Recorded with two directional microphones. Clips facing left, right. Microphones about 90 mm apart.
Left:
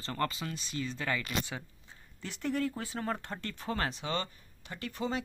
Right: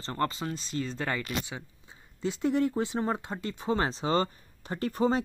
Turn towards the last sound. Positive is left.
turn(degrees=-40)  # may be behind; listen again after turning